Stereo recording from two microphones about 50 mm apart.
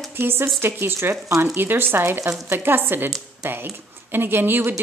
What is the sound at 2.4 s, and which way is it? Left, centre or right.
Speech, right.